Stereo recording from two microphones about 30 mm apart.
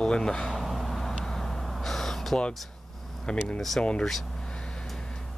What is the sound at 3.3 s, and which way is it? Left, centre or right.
Speech, left.